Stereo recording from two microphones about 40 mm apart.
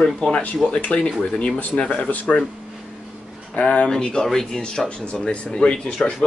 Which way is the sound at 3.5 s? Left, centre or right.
Left.